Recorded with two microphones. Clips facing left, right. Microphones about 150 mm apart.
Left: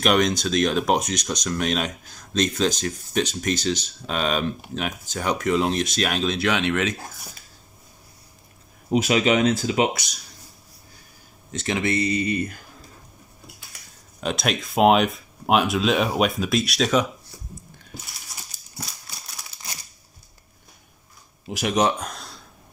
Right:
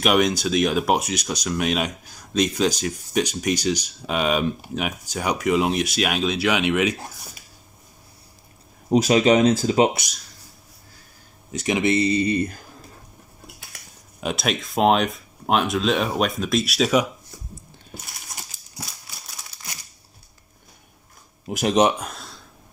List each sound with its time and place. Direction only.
0.0 s speech: 10° right (ahead or behind)
8.9 s speech: 40° right (ahead or behind)
11.5 s speech: 15° right (ahead or behind); by 12.5 s 35° right (ahead or behind)
14.2 s speech: 5° right (ahead or behind)
21.6 s speech: 25° right (ahead or behind)
21.9 s a sound: 5° right (ahead or behind)